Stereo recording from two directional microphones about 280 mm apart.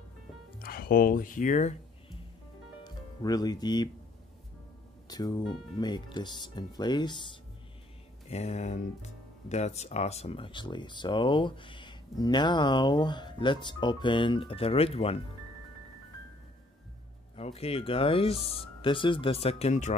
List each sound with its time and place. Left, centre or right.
0.6 s music: left
2.8 s speech: centre
5.1 s speech: centre
8.3 s speech: left
17.4 s speech: left